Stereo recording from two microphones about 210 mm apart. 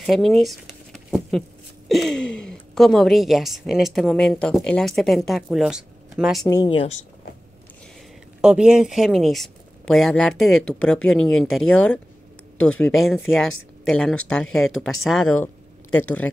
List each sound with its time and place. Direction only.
0.0 s a sound: centre (ahead or behind)
1.9 s speech: centre (ahead or behind)
6.4 s speech: 20° left (ahead or behind)
8.4 s a woman's voice: 5° right (ahead or behind)